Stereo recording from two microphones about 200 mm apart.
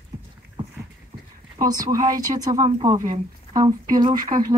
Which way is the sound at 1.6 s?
15° right (ahead or behind).